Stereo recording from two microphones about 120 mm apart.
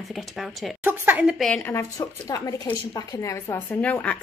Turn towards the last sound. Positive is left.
turn(degrees=10)  # may be behind; listen again after turning